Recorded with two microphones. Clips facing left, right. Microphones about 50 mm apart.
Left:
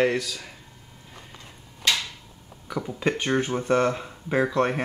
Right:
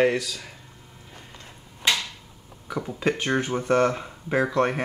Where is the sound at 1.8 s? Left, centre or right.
Centre.